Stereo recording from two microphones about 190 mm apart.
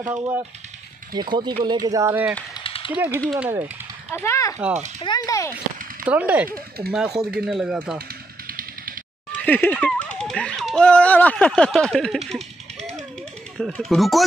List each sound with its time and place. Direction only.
0.0 s speech: 10° right (ahead or behind)
1.1 s speech: 20° right (ahead or behind)
2.5 s a sound: 25° left (ahead or behind)
3.1 s speech: 5° left (ahead or behind)
3.3 s speech: 10° right (ahead or behind)
4.1 s speech: 15° left (ahead or behind)
6.0 s speech: 10° right (ahead or behind)
6.4 s speech: 50° right (ahead or behind)
6.9 s speech: centre (ahead or behind)
8.1 s a sound: 50° right (ahead or behind)
9.3 s speech: 10° left (ahead or behind)
13.6 s speech: centre (ahead or behind)